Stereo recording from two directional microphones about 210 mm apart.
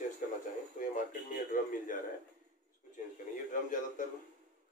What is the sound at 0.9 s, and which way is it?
A man's voice, 40° left (ahead or behind).